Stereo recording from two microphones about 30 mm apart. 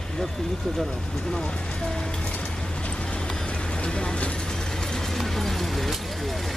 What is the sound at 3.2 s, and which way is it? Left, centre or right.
Vehicle, left.